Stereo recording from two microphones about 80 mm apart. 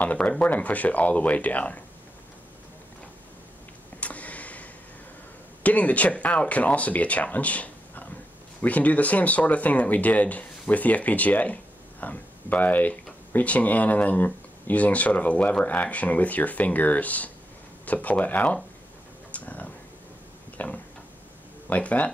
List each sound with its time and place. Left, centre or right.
0.0 s speech: centre
4.0 s a sound: centre
5.6 s speech: centre
19.3 s a sound: centre
20.5 s tick-tock: centre
21.6 s speech: centre